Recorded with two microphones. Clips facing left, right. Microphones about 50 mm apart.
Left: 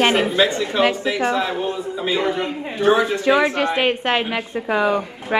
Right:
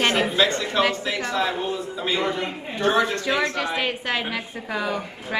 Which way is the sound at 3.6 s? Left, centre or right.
Left.